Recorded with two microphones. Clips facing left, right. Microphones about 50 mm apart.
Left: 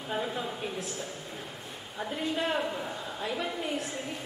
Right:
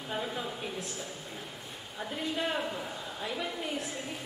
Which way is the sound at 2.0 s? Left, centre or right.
Centre.